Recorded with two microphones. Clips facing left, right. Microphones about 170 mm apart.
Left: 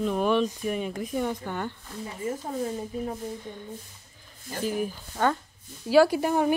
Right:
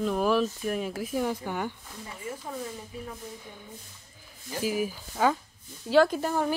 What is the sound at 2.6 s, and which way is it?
Speech, 35° left (ahead or behind).